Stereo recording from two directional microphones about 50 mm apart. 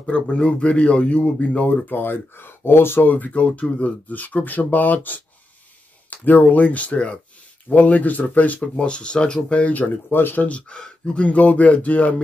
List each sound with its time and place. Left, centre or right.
0.0 s speech: left
1.9 s speech: left
3.1 s speech: left
8.7 s speech: centre; by 10.5 s left
10.5 s speech: left